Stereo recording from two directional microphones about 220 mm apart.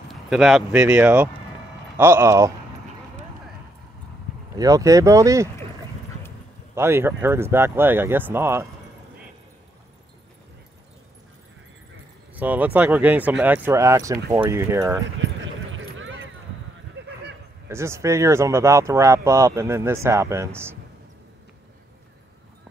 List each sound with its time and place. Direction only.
0.1 s speech: centre (ahead or behind)
4.6 s speech: 15° right (ahead or behind)
6.7 s speech: 10° right (ahead or behind)
12.4 s speech: 5° right (ahead or behind)
15.4 s clip-clop: 60° right (ahead or behind)
17.6 s speech: 10° right (ahead or behind)